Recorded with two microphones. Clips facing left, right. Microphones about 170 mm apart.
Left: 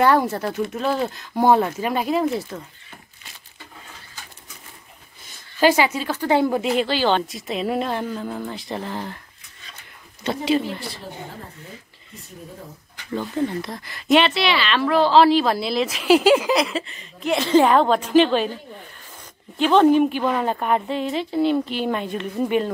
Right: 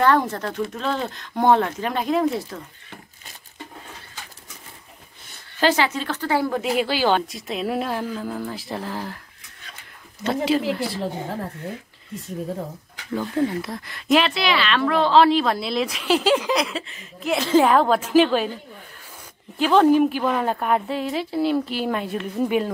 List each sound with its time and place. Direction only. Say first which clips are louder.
0.0 s speech: left 1 dB; 10° left (ahead or behind)
5.6 s speech: left 3 dB; 10° left (ahead or behind)
6.3 s speech: left 4 dB; 20° left (ahead or behind)
6.6 s speech: left 1 dB; 5° right (ahead or behind)
10.2 s speech: even; centre (ahead or behind)
13.1 s speech: right 1 dB; centre (ahead or behind)
19.6 s speech: left 1 dB; 5° right (ahead or behind)